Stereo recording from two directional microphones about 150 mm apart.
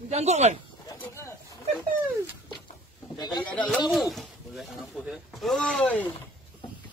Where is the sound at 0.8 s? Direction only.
20° left (ahead or behind).